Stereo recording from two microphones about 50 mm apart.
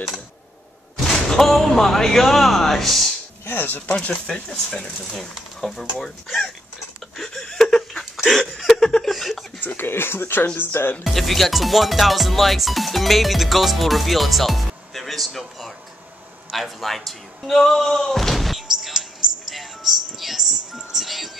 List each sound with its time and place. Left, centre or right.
0.9 s speech: centre
3.4 s speech: left
5.1 s speech: centre
7.2 s a sound: centre
8.7 s speech: centre
9.1 s chuckle: centre
9.6 s speech: left
11.1 s speech: centre
16.5 s slam: centre
20.7 s music: centre